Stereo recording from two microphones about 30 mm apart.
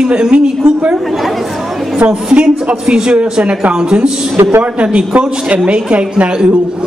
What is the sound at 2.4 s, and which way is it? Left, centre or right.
Speech, right.